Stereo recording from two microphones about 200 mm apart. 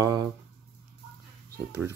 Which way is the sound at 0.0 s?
20° right (ahead or behind).